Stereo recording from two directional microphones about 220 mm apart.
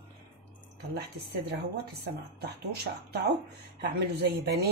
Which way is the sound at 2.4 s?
45° right (ahead or behind).